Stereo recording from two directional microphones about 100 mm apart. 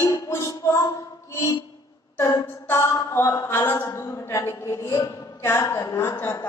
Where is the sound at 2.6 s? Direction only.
25° left (ahead or behind).